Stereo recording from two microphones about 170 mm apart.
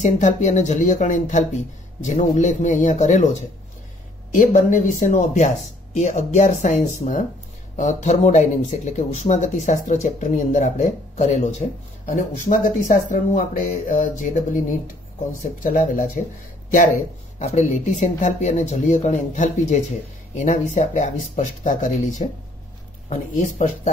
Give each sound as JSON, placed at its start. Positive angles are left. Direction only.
{"t": 0.0, "sound": "speech", "side_deg": 45}
{"t": 4.3, "sound": "speech", "side_deg": 50}
{"t": 12.1, "sound": "speech", "side_deg": 55}
{"t": 15.6, "sound": "speech", "side_deg": 50}
{"t": 17.4, "sound": "speech", "side_deg": 45}